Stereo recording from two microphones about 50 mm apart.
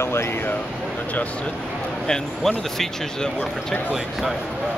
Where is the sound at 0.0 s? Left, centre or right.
Left.